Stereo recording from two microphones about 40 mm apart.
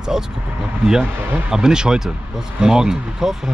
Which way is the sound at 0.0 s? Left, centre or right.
Centre.